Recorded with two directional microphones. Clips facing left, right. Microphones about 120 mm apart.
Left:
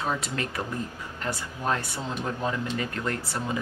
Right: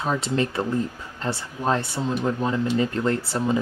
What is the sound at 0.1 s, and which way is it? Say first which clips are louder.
Speech: right 6 dB; 25° right (ahead or behind).